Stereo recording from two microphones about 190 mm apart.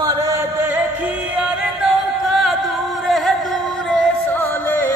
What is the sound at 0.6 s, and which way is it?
Music, 10° right (ahead or behind).